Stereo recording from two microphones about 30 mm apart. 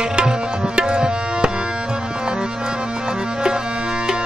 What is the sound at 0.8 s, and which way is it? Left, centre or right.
Tabla, right.